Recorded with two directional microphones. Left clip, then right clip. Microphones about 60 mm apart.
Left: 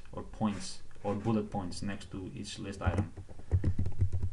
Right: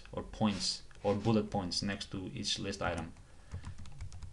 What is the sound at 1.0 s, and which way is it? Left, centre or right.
Speech, centre.